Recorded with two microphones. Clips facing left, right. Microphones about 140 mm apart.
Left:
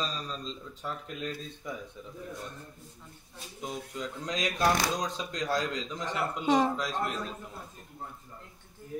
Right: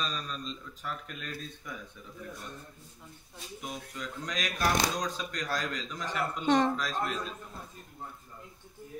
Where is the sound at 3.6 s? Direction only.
25° left (ahead or behind).